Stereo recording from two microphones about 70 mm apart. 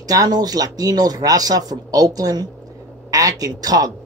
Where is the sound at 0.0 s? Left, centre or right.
Right.